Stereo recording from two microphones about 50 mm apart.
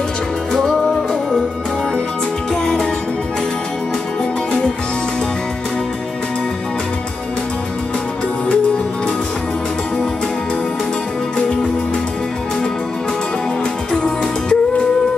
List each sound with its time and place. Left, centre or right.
0.5 s music: centre
2.5 s music: centre
13.9 s music: centre